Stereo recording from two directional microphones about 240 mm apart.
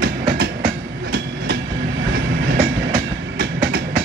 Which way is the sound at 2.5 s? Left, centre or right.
Right.